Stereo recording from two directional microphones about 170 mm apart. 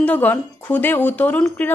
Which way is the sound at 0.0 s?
10° left (ahead or behind).